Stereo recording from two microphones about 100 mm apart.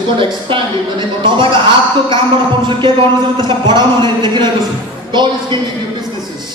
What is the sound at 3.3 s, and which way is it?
Speech, 50° right (ahead or behind).